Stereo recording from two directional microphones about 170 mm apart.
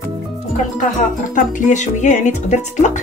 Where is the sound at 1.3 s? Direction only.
45° left (ahead or behind).